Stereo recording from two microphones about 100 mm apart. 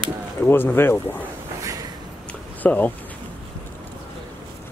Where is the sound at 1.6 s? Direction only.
35° right (ahead or behind).